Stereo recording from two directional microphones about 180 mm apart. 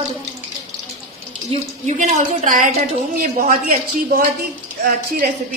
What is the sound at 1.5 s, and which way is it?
A woman's voice, 35° right (ahead or behind).